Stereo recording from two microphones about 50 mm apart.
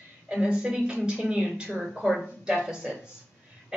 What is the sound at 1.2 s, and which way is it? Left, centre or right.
A woman's voice, centre.